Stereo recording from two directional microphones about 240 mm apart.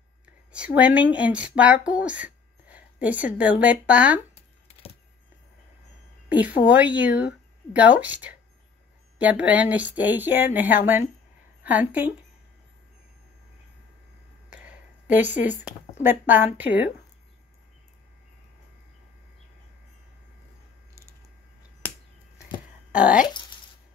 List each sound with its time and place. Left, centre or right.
0.5 s speech: centre
6.2 s a woman's voice: centre
15.0 s speech: centre
22.8 s speech: centre
23.2 s speech: centre